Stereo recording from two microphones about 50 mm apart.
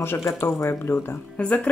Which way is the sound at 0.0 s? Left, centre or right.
Left.